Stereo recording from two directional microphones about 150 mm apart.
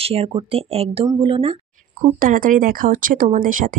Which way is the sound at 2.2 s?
65° right (ahead or behind).